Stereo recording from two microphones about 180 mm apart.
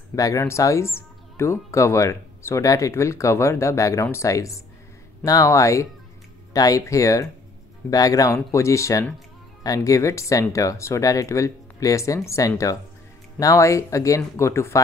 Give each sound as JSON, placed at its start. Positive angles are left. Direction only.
{"t": 0.1, "sound": "speech", "side_deg": 20}